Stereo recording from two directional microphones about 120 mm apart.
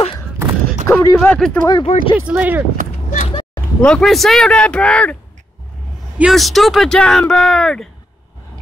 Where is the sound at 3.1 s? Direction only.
90° left.